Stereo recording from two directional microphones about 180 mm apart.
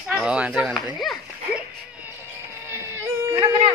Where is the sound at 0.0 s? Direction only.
5° right (ahead or behind).